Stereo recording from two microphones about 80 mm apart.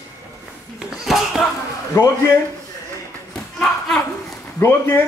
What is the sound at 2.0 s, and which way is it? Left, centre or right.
Speech, left.